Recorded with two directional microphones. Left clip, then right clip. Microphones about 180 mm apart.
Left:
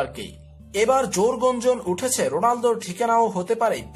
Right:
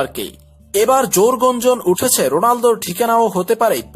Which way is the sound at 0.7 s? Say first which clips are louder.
Right 6 dB; 30° right (ahead or behind).